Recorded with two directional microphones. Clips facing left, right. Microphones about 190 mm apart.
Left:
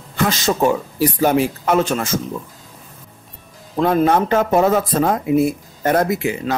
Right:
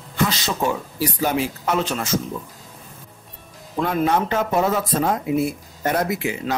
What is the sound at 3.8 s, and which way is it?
Speech, 45° left (ahead or behind).